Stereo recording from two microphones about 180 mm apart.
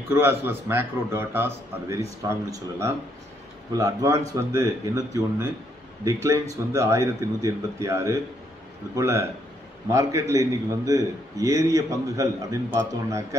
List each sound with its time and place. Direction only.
0.1 s a man's voice: 10° right (ahead or behind)
6.7 s a man's voice: 15° right (ahead or behind)